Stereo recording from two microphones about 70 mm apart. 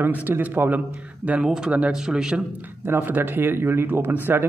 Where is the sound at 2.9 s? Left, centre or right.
Right.